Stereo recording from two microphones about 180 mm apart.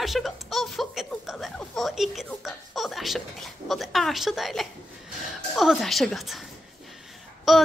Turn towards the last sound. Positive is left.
turn(degrees=0)  # may be behind; listen again after turning